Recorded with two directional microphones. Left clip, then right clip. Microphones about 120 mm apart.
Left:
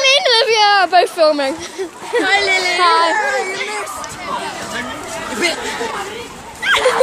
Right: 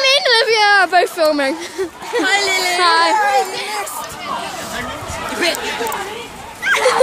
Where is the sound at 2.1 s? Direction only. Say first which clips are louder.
Left 2 dB; 40° right (ahead or behind).